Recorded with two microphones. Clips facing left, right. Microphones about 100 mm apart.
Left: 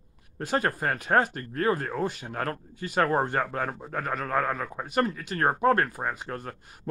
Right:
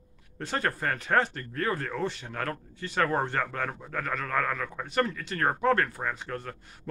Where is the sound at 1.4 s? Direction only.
35° left (ahead or behind).